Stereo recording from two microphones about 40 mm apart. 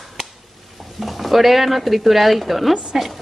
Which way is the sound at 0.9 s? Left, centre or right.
Centre.